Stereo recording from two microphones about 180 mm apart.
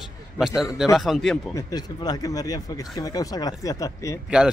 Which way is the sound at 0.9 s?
Centre (ahead or behind).